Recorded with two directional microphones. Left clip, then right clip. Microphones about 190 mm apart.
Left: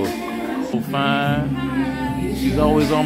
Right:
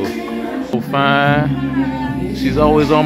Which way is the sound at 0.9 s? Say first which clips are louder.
Right 7 dB; 20° right (ahead or behind).